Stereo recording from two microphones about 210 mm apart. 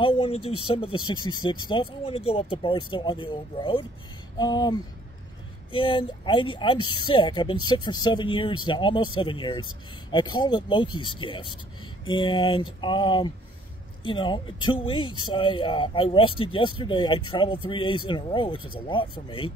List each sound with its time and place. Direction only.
0.0 s speech: 25° left (ahead or behind)